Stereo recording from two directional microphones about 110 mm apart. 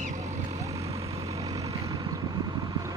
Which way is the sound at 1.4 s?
35° right (ahead or behind).